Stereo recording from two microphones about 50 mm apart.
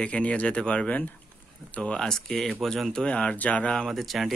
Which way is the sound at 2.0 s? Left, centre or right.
Centre.